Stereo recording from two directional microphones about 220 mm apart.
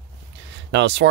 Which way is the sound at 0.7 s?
55° right (ahead or behind).